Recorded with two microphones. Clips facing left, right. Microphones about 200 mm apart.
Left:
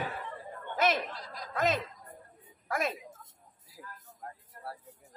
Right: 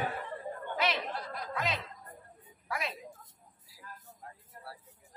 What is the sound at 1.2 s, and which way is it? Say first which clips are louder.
Snicker: right 3 dB; 60° right (ahead or behind).